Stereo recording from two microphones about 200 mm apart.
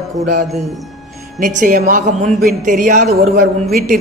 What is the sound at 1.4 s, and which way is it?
Speech, 40° right (ahead or behind).